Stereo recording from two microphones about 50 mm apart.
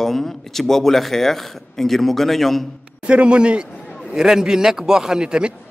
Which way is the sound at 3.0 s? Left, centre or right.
Right.